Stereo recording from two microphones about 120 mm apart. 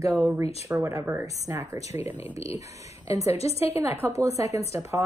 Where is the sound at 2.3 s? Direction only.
60° left (ahead or behind).